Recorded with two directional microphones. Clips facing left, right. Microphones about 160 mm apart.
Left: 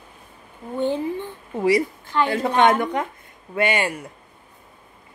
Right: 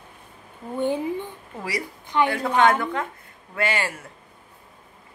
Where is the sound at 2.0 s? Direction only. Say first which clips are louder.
Even; 20° right (ahead or behind).